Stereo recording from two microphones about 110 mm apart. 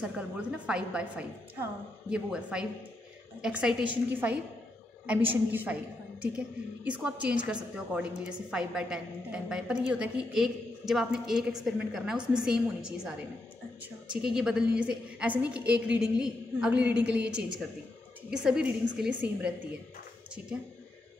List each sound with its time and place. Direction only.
0.0 s a woman's voice: 10° right (ahead or behind)
14.1 s a woman's voice: 5° right (ahead or behind)